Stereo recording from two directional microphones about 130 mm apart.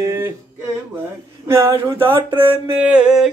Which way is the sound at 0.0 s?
20° right (ahead or behind).